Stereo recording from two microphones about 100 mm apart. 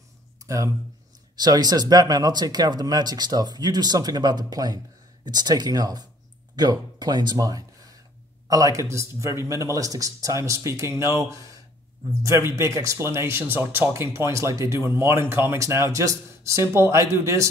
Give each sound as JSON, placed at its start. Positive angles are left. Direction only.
{"t": 0.5, "sound": "speech", "side_deg": -35}